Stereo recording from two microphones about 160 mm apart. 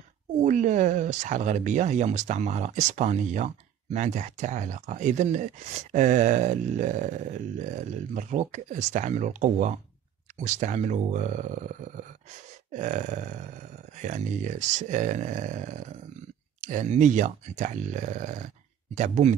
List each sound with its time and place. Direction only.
0.4 s speech: 50° right (ahead or behind)